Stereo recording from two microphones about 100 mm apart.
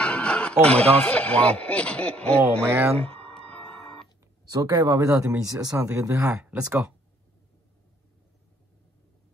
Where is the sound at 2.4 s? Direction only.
25° right (ahead or behind).